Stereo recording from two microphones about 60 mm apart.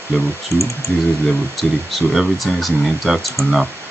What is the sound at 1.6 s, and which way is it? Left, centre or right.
Speech, centre.